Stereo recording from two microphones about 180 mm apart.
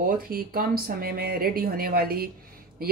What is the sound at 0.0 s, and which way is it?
Speech, 55° right (ahead or behind).